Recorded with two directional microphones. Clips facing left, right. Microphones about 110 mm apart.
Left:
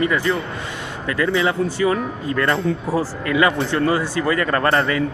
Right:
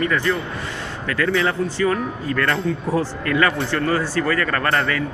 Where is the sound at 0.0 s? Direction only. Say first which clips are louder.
Left 1 dB; 15° left (ahead or behind).